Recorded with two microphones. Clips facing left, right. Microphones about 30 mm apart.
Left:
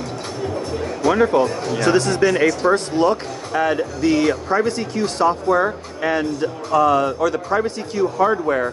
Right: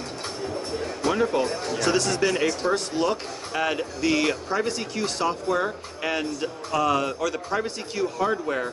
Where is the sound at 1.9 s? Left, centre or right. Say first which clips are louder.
Left 6 dB; centre.